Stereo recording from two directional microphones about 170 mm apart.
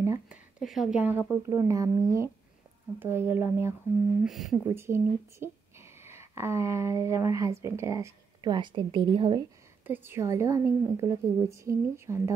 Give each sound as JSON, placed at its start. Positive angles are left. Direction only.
{"t": 0.7, "sound": "a woman's voice", "side_deg": -5}
{"t": 4.2, "sound": "speech", "side_deg": 0}
{"t": 4.6, "sound": "speech", "side_deg": -15}
{"t": 9.8, "sound": "a woman's voice", "side_deg": -10}